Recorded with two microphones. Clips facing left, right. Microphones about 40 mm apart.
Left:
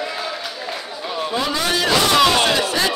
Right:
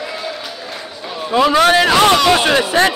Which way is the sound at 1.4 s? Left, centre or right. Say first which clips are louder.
Right 12 dB; right.